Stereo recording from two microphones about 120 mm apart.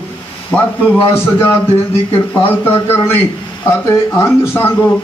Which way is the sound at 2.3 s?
15° left (ahead or behind).